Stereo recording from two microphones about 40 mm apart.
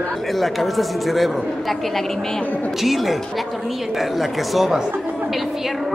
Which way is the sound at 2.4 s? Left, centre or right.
Left.